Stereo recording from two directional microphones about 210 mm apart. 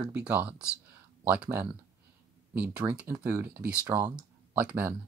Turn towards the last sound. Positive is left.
turn(degrees=-10)  # may be behind; listen again after turning